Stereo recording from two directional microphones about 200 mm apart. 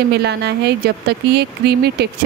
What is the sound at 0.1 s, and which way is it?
Speech, 55° right (ahead or behind).